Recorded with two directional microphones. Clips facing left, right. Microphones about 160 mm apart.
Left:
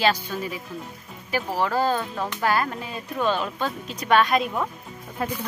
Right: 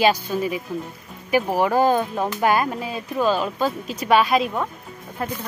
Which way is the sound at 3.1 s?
5° right (ahead or behind).